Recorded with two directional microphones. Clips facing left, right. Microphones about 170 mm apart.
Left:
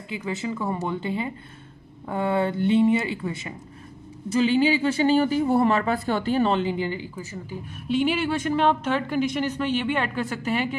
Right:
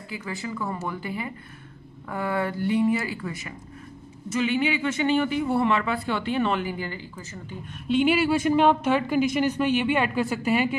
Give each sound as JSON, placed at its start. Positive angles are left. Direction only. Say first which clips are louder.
{"t": 0.1, "sound": "speech", "louder": "left 4 dB", "side_deg": 25}